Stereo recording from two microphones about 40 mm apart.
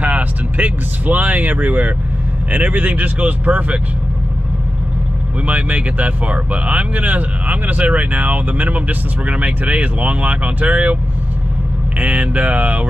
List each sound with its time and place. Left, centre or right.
0.0 s speech: right
3.2 s speech: right
5.5 s speech: right
12.0 s speech: right